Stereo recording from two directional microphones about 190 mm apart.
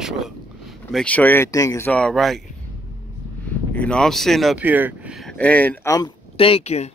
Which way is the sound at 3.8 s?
5° left (ahead or behind).